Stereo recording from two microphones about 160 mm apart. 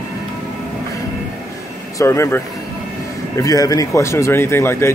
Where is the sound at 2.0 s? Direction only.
15° left (ahead or behind).